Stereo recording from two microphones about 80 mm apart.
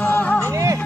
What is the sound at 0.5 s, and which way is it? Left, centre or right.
Music, right.